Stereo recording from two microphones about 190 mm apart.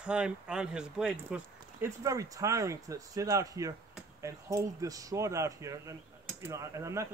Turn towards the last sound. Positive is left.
turn(degrees=-15)  # may be behind; listen again after turning